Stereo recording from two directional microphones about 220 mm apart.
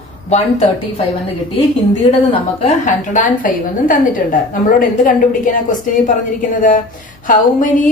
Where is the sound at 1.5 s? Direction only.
25° left (ahead or behind).